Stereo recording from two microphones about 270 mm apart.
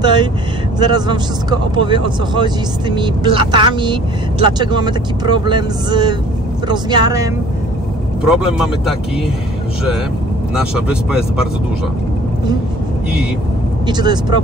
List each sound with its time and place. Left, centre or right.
0.0 s vehicle: centre
0.7 s speech: centre
8.2 s speech: centre
10.5 s speech: centre
13.8 s speech: centre